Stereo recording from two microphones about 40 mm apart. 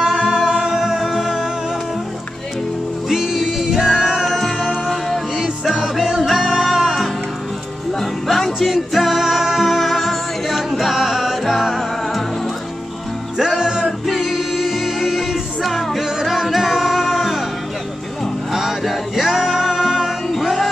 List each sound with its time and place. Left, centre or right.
0.1 s music: centre
3.1 s music: centre
4.2 s music: centre
5.3 s music: centre
8.0 s music: centre
13.4 s music: centre
13.8 s music: centre
18.5 s music: centre